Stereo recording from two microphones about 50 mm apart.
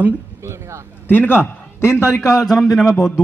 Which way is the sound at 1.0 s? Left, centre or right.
Left.